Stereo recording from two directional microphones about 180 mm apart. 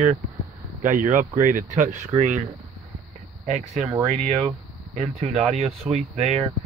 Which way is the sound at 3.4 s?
40° right (ahead or behind).